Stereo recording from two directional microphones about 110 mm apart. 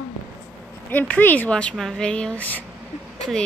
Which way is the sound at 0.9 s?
15° left (ahead or behind).